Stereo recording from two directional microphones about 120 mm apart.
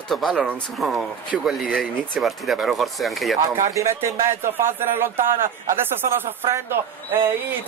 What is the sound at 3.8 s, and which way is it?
Speech, 25° right (ahead or behind).